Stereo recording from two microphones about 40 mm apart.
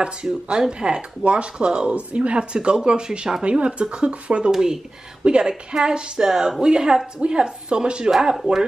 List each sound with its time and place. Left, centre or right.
0.0 s speech: right
3.4 s speech: right
4.5 s speech: centre
5.2 s speech: right